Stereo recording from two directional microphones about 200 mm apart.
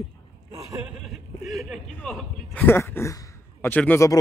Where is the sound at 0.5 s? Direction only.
15° right (ahead or behind).